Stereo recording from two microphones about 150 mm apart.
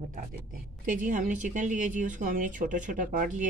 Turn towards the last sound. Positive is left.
turn(degrees=-60)  # may be behind; listen again after turning